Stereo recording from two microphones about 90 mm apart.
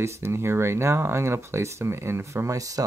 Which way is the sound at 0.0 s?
30° right (ahead or behind).